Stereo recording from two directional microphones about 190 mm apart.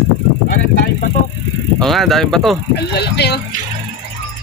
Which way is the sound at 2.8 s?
60° left (ahead or behind).